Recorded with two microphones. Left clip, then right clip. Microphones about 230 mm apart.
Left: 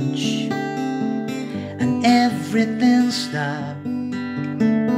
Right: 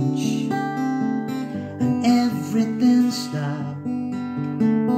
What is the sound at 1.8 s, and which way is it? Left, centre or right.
Music, centre.